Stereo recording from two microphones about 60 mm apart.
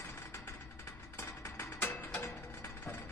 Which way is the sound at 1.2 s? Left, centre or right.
Left.